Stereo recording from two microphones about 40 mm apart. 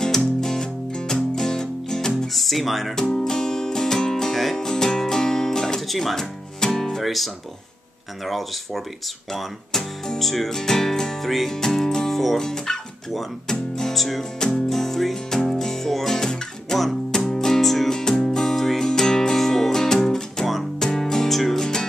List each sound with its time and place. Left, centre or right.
0.0 s music: centre
2.3 s speech: centre
3.2 s music: centre
4.6 s music: centre
5.8 s music: centre
7.0 s speech: centre
8.3 s speech: centre
11.3 s music: centre
12.4 s speech: centre
14.7 s music: centre